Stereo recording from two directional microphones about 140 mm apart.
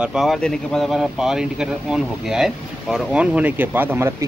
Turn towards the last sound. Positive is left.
turn(degrees=-15)  # may be behind; listen again after turning